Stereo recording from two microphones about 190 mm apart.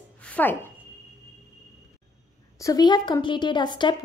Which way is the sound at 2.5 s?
20° left (ahead or behind).